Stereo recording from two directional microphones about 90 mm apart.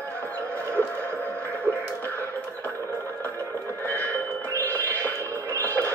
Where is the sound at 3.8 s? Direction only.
20° left (ahead or behind).